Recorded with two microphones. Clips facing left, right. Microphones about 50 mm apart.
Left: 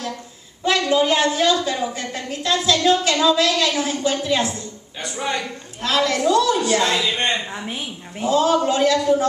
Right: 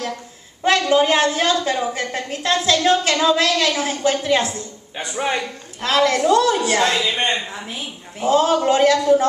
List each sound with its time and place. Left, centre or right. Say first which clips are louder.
0.8 s a woman's voice: even; right
4.9 s a woman's voice: right 3 dB; right
7.0 s a man's voice: right 1 dB; centre
8.2 s a woman's voice: right 1 dB; right